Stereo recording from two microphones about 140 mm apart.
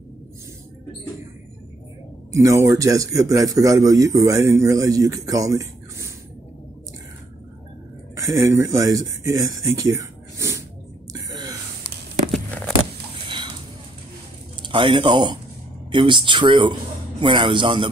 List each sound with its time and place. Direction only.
2.3 s a man's voice: 25° right (ahead or behind)
8.2 s speech: 25° right (ahead or behind)
13.3 s a sound: 35° right (ahead or behind)
14.6 s speech: 35° right (ahead or behind)